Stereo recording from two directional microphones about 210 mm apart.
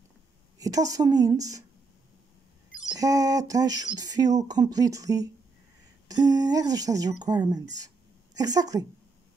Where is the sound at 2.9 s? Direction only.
15° right (ahead or behind).